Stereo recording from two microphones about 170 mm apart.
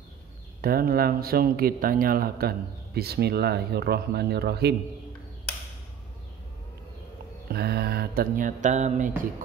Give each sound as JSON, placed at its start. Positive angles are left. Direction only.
{"t": 0.6, "sound": "speech", "side_deg": -60}
{"t": 7.5, "sound": "speech", "side_deg": -70}